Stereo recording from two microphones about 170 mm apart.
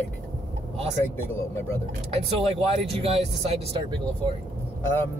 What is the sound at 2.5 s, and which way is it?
Speech, 35° right (ahead or behind).